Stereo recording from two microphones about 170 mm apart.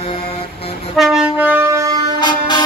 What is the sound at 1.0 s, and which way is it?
Wind instrument, 5° right (ahead or behind).